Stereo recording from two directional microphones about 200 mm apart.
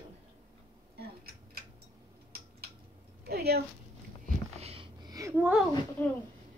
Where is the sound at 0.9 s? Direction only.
50° right (ahead or behind).